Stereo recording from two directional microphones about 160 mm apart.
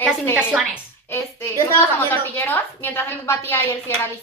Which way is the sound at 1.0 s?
15° left (ahead or behind).